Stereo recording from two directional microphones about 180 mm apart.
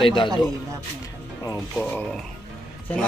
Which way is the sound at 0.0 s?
25° left (ahead or behind).